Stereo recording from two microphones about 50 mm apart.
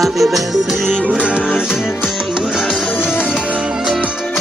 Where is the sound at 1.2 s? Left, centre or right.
Right.